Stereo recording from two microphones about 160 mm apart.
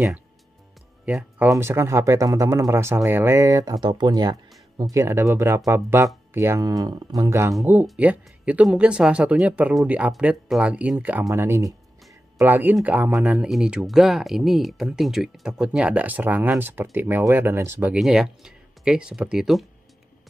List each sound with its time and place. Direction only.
1.0 s speech: 5° right (ahead or behind)
7.8 s speech: 5° right (ahead or behind)
17.9 s speech: centre (ahead or behind)